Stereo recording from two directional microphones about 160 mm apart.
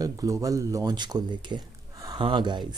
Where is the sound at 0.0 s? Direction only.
20° right (ahead or behind).